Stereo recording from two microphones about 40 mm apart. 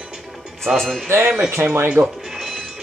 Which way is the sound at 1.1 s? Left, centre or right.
Right.